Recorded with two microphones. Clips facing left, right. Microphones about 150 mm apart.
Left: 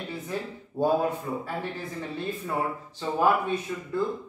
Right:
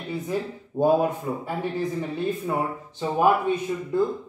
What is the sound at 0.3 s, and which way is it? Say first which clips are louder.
A man's voice: right 5 dB; 15° right (ahead or behind).